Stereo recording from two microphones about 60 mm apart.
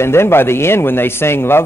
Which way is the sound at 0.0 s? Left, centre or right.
Left.